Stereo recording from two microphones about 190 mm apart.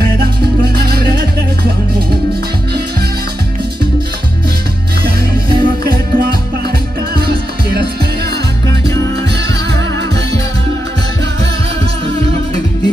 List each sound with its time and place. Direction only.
0.7 s music: 55° right (ahead or behind)
5.0 s music: 55° right (ahead or behind)